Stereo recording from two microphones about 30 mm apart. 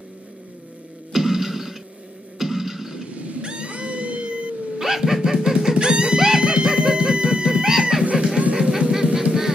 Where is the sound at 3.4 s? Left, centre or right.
Right.